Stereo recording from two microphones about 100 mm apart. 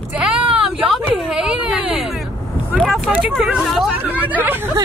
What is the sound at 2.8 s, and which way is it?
Vehicle, centre (ahead or behind).